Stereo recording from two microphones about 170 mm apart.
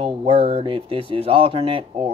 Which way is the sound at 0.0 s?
30° right (ahead or behind).